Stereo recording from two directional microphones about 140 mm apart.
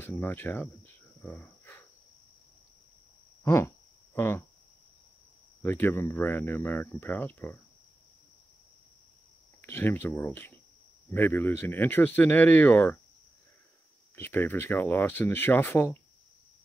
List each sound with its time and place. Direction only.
0.0 s speech: 15° left (ahead or behind)
1.2 s cricket: 15° left (ahead or behind)
3.4 s a sound: 20° left (ahead or behind)
5.6 s speech: 15° left (ahead or behind)
9.6 s speech: 15° left (ahead or behind)
14.1 s speech: 15° left (ahead or behind)